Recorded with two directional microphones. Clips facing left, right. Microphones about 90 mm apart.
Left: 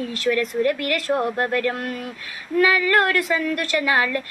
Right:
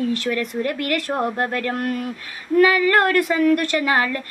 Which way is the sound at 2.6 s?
40° right (ahead or behind).